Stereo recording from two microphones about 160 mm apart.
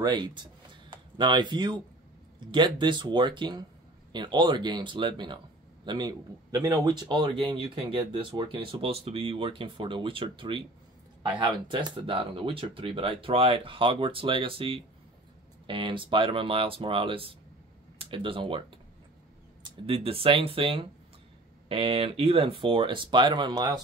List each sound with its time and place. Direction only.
0.0 s speech: 25° right (ahead or behind)
19.6 s speech: 35° right (ahead or behind)